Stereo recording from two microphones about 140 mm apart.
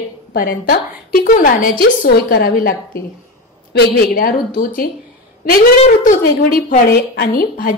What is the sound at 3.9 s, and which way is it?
Speech, 90° left.